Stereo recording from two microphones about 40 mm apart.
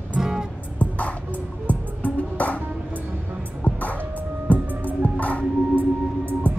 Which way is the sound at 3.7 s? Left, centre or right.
Left.